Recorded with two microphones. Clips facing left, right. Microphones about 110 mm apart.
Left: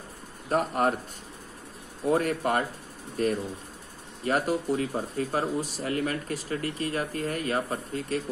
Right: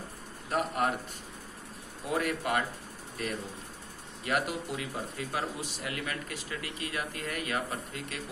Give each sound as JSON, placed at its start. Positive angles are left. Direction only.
{"t": 0.5, "sound": "speech", "side_deg": 40}
{"t": 2.0, "sound": "speech", "side_deg": 40}